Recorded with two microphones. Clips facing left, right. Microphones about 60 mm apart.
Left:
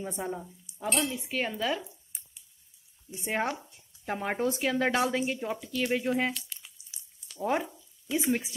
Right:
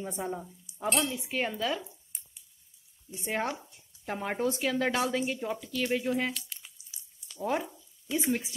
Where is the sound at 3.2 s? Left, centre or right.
Centre.